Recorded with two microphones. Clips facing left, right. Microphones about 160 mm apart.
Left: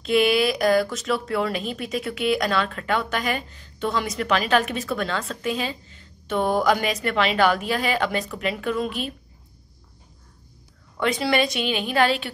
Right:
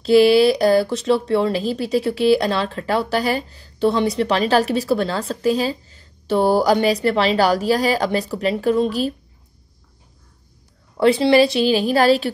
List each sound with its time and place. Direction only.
0.0 s speech: 35° right (ahead or behind)
11.0 s speech: 30° right (ahead or behind)